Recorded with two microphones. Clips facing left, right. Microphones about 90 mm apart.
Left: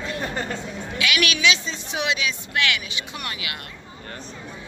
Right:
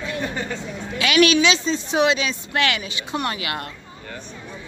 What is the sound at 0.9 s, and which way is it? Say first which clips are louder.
Speech: right 8 dB; 35° right (ahead or behind).